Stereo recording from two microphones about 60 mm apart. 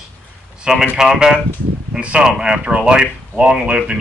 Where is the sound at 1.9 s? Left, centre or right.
Centre.